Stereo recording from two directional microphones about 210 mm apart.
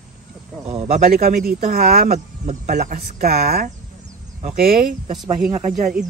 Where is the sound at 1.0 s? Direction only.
45° right (ahead or behind).